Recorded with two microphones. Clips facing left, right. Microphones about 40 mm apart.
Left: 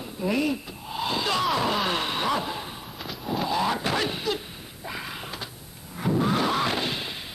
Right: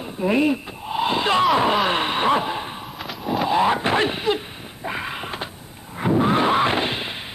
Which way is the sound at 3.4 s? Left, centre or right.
Right.